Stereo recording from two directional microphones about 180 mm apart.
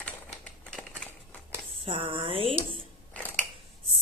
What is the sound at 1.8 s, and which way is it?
Speech, 30° right (ahead or behind).